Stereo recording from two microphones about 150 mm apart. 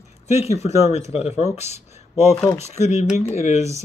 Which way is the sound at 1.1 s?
45° left (ahead or behind).